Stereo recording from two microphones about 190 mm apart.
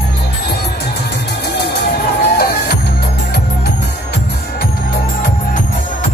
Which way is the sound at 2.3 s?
60° left (ahead or behind).